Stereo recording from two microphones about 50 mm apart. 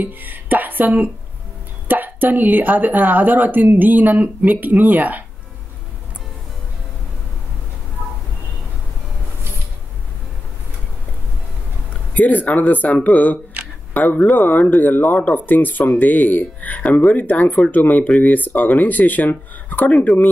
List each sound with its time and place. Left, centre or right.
0.0 s speech: right
12.1 s speech: left
20.1 s speech: centre